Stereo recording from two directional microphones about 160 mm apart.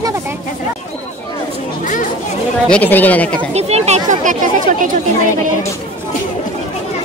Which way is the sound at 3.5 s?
40° right (ahead or behind).